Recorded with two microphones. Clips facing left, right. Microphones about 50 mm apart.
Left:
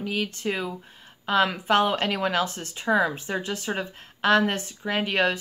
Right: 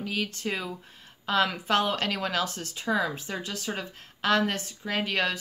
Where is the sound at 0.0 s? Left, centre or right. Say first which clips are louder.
Left 3 dB; centre.